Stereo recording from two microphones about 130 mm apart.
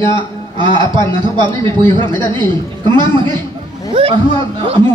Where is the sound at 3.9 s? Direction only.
45° right (ahead or behind).